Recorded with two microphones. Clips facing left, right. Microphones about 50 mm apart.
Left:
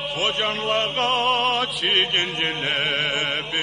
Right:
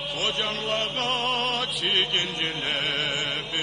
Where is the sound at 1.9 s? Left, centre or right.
Left.